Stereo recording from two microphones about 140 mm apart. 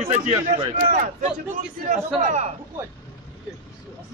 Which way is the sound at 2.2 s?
55° right (ahead or behind).